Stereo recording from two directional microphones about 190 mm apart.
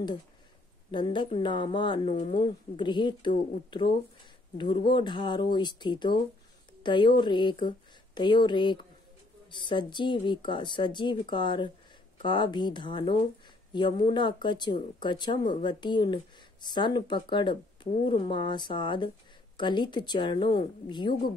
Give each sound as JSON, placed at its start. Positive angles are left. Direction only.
{"t": 0.9, "sound": "speech", "side_deg": 25}